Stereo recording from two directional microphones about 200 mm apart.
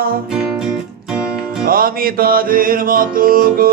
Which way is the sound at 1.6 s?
45° right (ahead or behind).